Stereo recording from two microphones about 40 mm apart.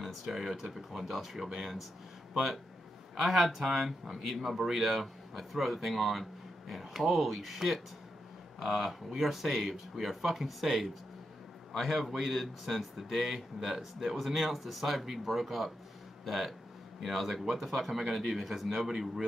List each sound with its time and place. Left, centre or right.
0.0 s speech: centre
3.2 s speech: centre